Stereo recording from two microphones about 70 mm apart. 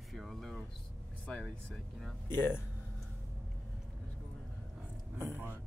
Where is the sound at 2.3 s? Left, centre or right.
Left.